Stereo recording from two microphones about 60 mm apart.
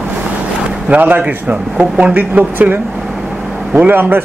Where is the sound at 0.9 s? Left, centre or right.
Right.